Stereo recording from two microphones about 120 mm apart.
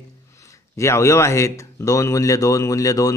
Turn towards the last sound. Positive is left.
turn(degrees=30)  # may be behind; listen again after turning